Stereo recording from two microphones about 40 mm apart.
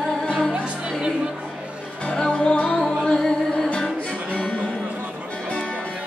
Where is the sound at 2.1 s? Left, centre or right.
Left.